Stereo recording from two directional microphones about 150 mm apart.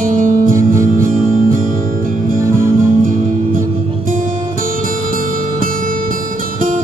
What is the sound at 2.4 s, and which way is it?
Music, 20° right (ahead or behind).